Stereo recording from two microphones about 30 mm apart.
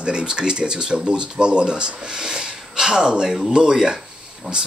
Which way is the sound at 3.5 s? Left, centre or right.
Right.